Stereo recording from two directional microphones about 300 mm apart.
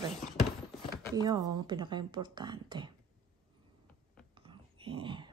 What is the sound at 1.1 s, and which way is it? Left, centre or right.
Speech, centre.